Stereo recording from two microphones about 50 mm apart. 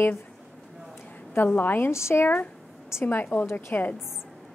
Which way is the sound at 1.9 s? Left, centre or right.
Left.